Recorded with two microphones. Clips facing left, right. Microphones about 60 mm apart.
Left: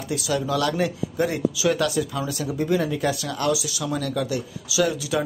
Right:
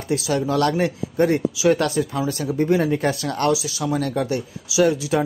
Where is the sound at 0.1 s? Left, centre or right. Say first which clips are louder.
Right 3 dB; right.